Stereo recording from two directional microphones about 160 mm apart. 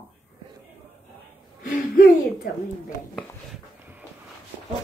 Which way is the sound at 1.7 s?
65° left (ahead or behind).